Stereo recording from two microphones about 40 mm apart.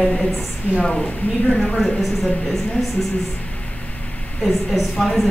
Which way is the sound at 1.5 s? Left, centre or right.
Centre.